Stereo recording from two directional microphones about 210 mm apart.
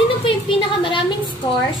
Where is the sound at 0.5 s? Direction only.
25° left (ahead or behind).